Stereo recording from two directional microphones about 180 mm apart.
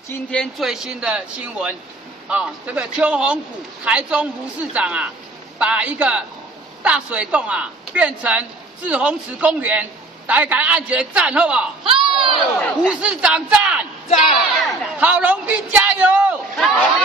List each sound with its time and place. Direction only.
0.1 s speech: 5° left (ahead or behind)
11.8 s crowd: 30° right (ahead or behind)
12.4 s speech: centre (ahead or behind)
15.0 s speech: 10° right (ahead or behind)
16.5 s speech: centre (ahead or behind)